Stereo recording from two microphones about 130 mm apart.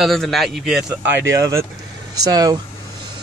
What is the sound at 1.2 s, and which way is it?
Speech, 20° right (ahead or behind).